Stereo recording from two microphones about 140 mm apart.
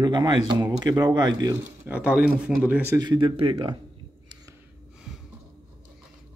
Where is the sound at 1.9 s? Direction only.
10° right (ahead or behind).